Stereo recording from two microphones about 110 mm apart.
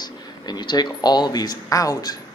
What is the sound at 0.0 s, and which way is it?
Speech, 40° left (ahead or behind).